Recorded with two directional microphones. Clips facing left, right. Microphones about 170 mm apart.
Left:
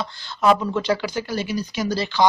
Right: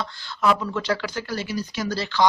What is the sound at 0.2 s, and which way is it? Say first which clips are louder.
Speech: left 4 dB; 20° left (ahead or behind).